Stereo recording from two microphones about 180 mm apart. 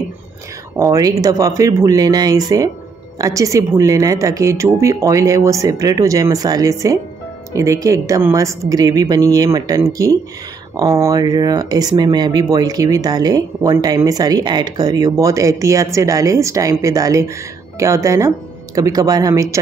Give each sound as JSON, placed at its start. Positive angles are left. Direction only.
{"t": 0.7, "sound": "speech", "side_deg": -20}